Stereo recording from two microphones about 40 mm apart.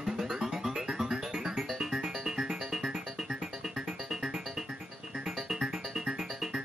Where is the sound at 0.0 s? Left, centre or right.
Centre.